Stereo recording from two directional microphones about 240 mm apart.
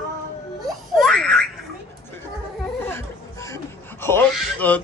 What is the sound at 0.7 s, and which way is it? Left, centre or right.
Baby laughter, centre.